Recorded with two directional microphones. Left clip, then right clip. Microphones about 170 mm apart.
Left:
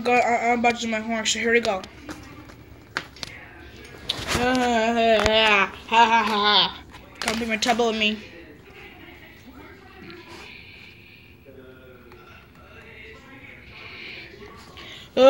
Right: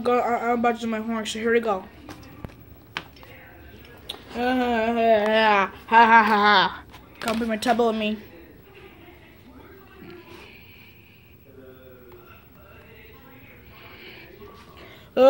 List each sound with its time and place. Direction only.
0.0 s speech: 35° right (ahead or behind)
4.1 s a sound: 35° right (ahead or behind)
4.6 s speech: 10° right (ahead or behind)
5.9 s speech: 60° right (ahead or behind)
7.2 s speech: 25° right (ahead or behind)
13.9 s a sound: 25° right (ahead or behind)
15.2 s speech: 15° right (ahead or behind)